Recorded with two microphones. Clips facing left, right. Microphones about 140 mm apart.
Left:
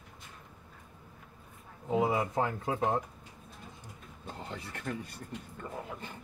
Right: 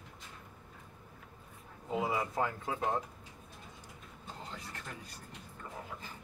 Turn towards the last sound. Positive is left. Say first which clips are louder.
# left 8 dB
turn(degrees=60)  # may be behind; listen again after turning